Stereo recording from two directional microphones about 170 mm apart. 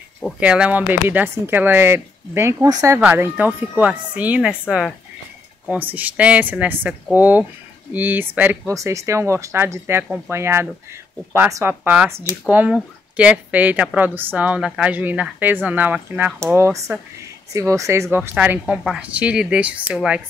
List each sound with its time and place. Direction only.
0.4 s a woman's voice: 5° right (ahead or behind)
3.0 s a woman's voice: 10° right (ahead or behind)